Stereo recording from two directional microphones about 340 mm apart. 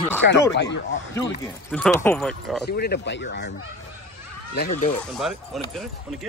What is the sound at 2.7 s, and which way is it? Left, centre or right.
Speech, left.